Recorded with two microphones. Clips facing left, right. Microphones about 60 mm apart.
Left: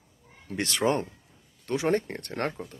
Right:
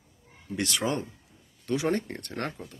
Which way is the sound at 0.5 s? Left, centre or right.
Left.